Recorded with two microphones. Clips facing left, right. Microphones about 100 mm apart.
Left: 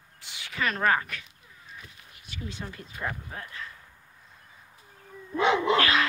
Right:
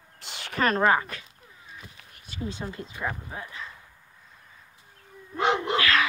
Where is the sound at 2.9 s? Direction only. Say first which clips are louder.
Even; 10° right (ahead or behind).